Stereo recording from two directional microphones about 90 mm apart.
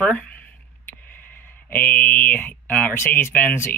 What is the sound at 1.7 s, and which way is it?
Speech, 20° left (ahead or behind).